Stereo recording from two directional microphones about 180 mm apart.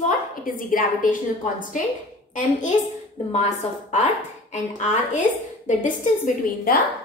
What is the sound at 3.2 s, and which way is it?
A woman's voice, 40° left (ahead or behind).